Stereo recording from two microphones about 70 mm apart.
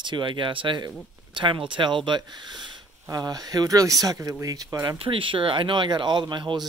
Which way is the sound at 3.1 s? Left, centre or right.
Right.